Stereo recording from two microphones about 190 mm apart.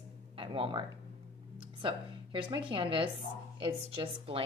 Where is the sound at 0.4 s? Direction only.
25° right (ahead or behind).